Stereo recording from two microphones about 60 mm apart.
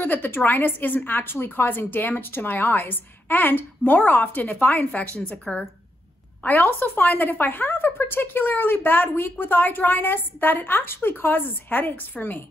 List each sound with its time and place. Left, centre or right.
0.0 s a woman's voice: left
6.4 s a woman's voice: left